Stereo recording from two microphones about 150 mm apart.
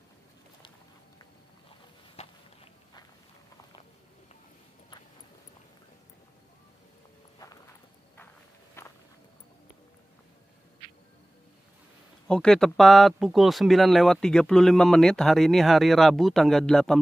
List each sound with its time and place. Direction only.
2.2 s walk: 45° left (ahead or behind)
8.8 s walk: 15° left (ahead or behind)
12.3 s speech: 5° left (ahead or behind)